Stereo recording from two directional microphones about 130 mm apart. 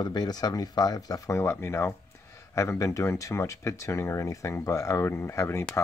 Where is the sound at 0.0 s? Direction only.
35° left (ahead or behind).